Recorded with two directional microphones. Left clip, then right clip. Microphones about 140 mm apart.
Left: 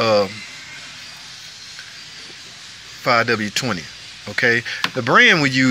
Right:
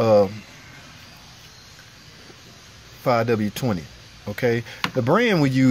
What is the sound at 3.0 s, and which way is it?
Speech, 20° right (ahead or behind).